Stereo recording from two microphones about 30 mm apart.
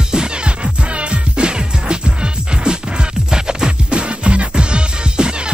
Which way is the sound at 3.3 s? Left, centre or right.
Right.